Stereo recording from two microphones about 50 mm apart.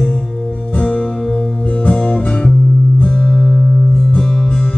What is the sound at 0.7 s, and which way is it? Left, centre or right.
Music, left.